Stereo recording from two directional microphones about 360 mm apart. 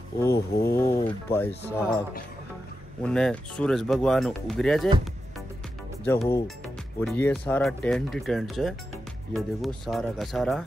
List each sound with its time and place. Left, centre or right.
0.5 s speech: left
0.7 s a sound: centre
1.5 s speech: centre
3.0 s speech: centre
6.0 s speech: centre